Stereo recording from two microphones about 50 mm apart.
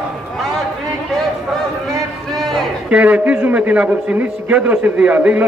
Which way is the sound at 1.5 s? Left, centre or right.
Centre.